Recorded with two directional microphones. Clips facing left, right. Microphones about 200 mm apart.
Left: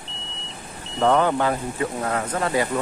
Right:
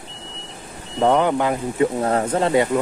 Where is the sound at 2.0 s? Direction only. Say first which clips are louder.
Right 5 dB; 30° right (ahead or behind).